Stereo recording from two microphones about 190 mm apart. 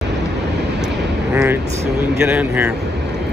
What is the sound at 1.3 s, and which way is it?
A man's voice, 10° right (ahead or behind).